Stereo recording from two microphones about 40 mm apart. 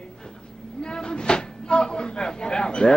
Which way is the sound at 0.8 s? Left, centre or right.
Centre.